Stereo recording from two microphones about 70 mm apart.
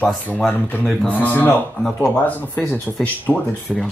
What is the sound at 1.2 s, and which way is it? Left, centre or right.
Speech, left.